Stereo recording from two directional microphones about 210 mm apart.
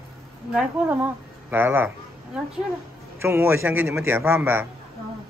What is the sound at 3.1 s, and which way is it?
A man's voice, 10° right (ahead or behind).